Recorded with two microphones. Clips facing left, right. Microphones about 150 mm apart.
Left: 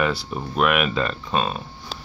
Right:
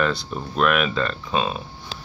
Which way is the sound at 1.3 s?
5° right (ahead or behind).